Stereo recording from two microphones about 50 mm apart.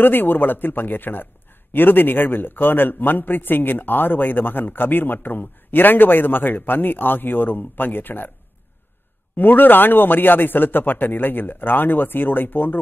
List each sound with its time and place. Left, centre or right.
0.0 s a man's voice: left
9.4 s speech: left